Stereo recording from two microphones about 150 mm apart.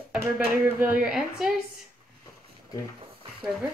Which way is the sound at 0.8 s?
10° right (ahead or behind).